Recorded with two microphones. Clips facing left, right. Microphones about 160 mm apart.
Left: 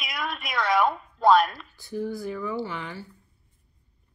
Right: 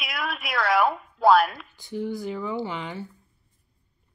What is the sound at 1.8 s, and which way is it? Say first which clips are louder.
Speech: right 1 dB; 20° right (ahead or behind).